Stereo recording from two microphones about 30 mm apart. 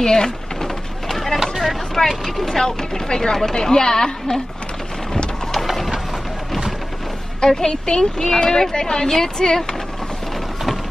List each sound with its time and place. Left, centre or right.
0.0 s a sound: centre
1.0 s run: centre
2.0 s speech: centre
2.4 s speech: centre
7.3 s a woman's voice: left